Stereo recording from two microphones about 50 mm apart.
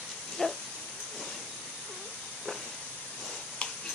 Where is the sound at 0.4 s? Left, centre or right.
Centre.